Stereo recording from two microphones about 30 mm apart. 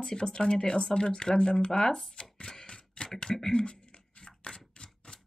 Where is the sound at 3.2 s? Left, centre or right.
Left.